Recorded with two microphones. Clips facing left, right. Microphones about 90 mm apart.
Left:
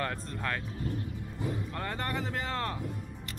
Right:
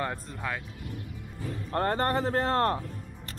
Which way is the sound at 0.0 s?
15° right (ahead or behind).